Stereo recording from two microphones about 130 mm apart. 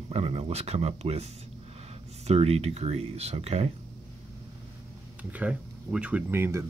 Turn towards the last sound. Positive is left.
turn(degrees=-20)  # may be behind; listen again after turning